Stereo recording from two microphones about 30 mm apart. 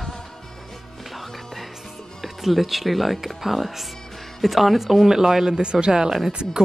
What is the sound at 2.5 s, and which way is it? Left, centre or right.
Speech, centre.